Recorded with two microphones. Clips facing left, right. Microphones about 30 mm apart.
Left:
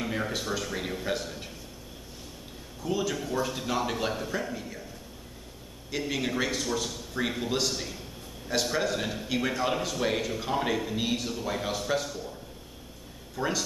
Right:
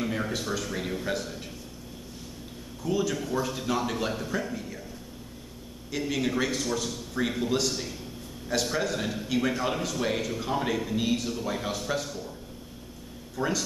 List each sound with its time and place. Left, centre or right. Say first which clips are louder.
0.0 s a man's voice: right 1 dB; centre
2.8 s a man's voice: right 2 dB; centre
5.9 s a man's voice: right 2 dB; centre
13.4 s speech: right 1 dB; centre